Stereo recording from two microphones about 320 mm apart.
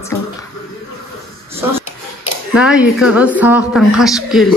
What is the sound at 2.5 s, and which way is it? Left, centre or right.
A woman's voice, centre.